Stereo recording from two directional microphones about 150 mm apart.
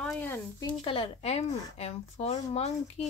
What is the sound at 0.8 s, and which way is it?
Speech, 35° left (ahead or behind).